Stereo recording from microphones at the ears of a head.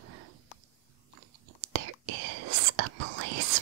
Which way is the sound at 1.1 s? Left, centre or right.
Right.